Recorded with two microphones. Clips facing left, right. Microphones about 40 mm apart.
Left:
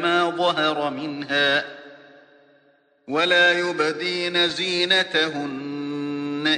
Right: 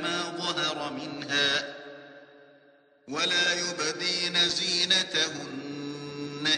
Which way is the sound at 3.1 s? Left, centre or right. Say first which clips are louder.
Left 10 dB; left.